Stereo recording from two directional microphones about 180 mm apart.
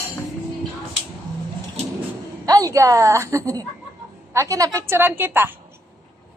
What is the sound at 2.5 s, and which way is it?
A woman's voice, 20° right (ahead or behind).